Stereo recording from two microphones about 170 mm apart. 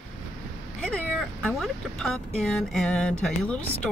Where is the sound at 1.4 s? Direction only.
5° left (ahead or behind).